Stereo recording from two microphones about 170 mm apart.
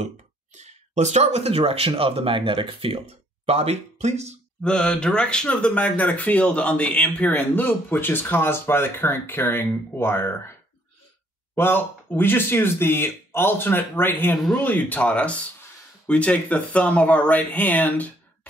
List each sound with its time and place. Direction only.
0.6 s speech: 40° right (ahead or behind)
4.6 s speech: 5° left (ahead or behind)
11.5 s speech: 10° left (ahead or behind)